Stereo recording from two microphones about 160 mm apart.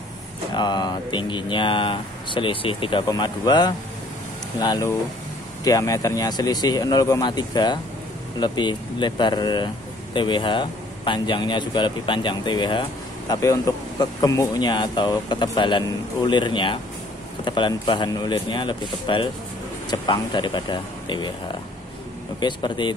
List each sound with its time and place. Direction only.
0.5 s speech: 25° left (ahead or behind)
22.4 s speech: 30° left (ahead or behind)